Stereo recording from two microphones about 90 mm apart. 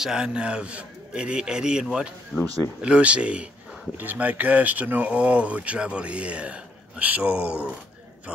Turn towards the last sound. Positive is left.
turn(degrees=-15)  # may be behind; listen again after turning